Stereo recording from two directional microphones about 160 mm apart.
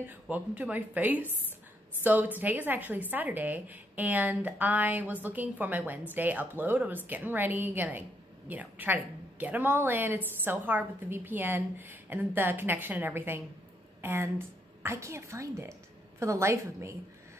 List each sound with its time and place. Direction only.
0.0 s a woman's voice: 10° right (ahead or behind)